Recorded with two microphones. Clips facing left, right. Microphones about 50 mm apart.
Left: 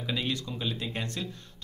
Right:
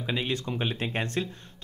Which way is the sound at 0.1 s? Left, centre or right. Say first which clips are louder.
Right 2 dB; right.